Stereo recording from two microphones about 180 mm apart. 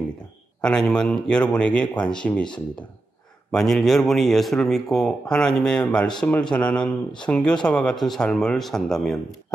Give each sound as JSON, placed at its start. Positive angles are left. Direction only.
{"t": 0.6, "sound": "a man's voice", "side_deg": 5}
{"t": 3.5, "sound": "a man's voice", "side_deg": 0}